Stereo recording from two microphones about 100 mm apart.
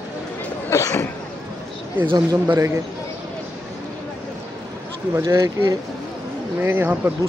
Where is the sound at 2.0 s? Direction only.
40° right (ahead or behind).